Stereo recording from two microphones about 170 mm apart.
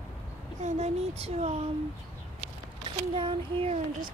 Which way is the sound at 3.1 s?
35° right (ahead or behind).